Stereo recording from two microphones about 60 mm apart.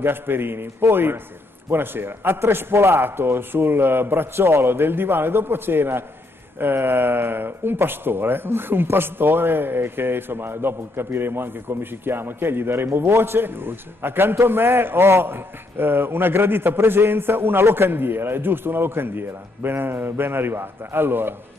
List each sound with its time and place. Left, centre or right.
0.0 s speech: right